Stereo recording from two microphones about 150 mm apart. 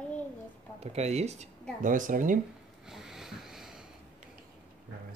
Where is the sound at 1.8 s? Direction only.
60° right (ahead or behind).